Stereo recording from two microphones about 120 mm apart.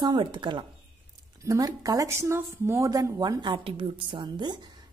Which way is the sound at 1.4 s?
25° right (ahead or behind).